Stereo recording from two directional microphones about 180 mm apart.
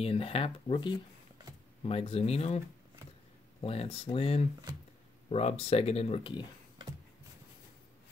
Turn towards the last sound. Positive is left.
turn(degrees=25)  # may be behind; listen again after turning